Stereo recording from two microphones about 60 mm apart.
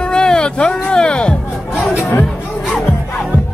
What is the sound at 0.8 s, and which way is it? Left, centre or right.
Speech, centre.